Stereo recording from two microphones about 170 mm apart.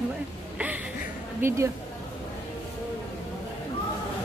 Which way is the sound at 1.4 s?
15° right (ahead or behind).